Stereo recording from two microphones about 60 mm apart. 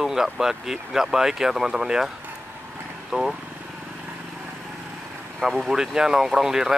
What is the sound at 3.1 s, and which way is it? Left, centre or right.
Speech, centre.